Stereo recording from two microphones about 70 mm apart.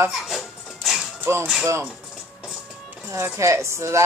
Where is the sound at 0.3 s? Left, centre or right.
Centre.